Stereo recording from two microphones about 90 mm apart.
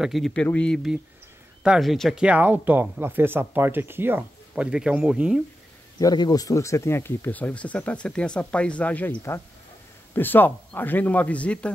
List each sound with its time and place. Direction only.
0.0 s speech: centre (ahead or behind)
0.3 s speech: 15° left (ahead or behind)
1.8 s speech: centre (ahead or behind)
2.2 s speech: 20° right (ahead or behind)
4.6 s speech: 10° right (ahead or behind)
5.9 s speech: 45° left (ahead or behind); by 9.1 s 15° left (ahead or behind)
10.1 s a man's voice: 20° left (ahead or behind)